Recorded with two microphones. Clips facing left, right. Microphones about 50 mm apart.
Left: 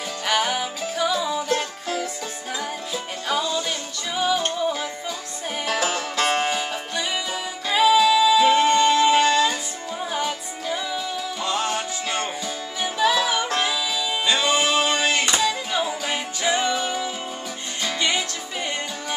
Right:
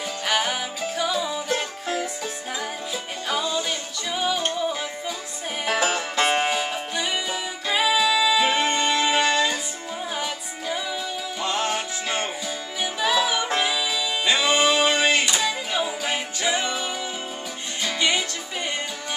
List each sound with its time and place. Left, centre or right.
0.3 s music: centre
5.7 s music: centre
10.1 s music: centre
11.4 s music: right
14.2 s music: right
15.4 s music: centre